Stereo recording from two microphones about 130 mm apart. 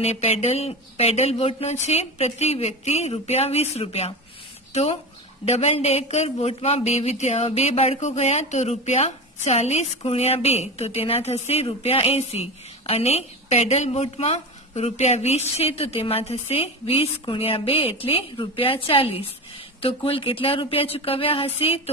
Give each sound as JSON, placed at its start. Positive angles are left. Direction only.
{"t": 0.0, "sound": "speech", "side_deg": 55}
{"t": 5.4, "sound": "speech", "side_deg": 55}